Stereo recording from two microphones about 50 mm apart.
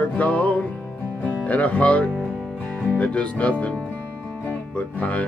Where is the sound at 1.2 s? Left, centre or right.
Left.